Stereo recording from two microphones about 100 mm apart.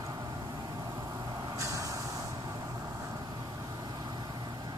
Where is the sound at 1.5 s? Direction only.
30° right (ahead or behind).